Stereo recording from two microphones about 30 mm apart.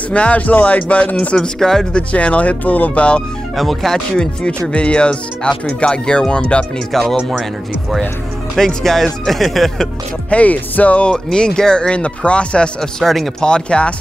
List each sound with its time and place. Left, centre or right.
0.1 s speech: left
1.6 s speech: centre
2.1 s speech: left
2.9 s speech: left
3.5 s speech: centre
4.5 s speech: left
6.9 s speech: centre
8.5 s speech: centre
10.3 s speech: left
11.3 s speech: left
12.3 s speech: left
13.0 s speech: centre
13.4 s speech: left